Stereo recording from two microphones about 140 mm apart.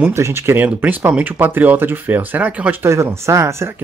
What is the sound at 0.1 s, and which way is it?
Speech, 20° right (ahead or behind).